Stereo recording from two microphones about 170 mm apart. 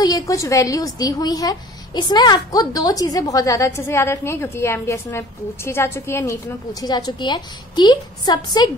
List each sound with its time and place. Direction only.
0.0 s a woman's voice: 20° left (ahead or behind)